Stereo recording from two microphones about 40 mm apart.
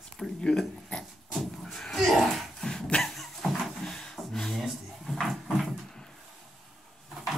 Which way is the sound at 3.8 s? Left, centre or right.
Centre.